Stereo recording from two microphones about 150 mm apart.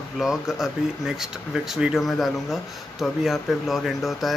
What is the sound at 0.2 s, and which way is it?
Speech, 5° right (ahead or behind).